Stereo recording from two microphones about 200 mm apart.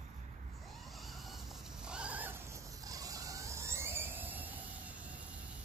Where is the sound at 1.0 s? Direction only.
Centre (ahead or behind).